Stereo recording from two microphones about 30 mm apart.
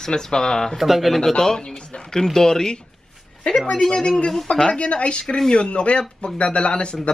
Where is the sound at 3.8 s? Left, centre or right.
Left.